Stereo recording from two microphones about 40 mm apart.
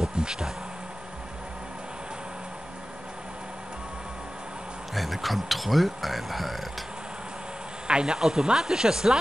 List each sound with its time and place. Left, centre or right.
0.1 s bee: centre
4.9 s speech: centre
7.9 s speech: right